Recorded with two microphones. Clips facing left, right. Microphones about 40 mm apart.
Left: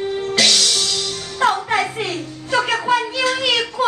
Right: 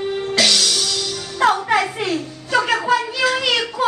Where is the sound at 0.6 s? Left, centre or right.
Left.